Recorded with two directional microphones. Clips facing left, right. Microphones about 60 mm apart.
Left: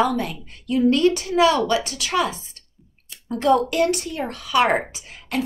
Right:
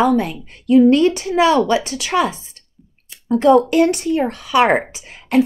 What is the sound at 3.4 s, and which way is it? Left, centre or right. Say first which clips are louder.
Speech: right 6 dB; right.